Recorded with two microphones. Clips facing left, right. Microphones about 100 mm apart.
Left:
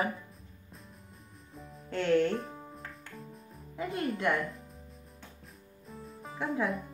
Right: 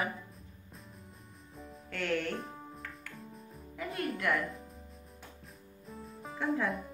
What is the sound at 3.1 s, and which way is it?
Music, centre (ahead or behind).